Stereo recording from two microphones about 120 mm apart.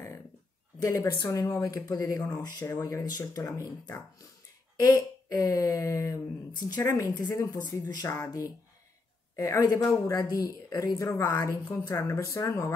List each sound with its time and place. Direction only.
0.7 s speech: 30° left (ahead or behind)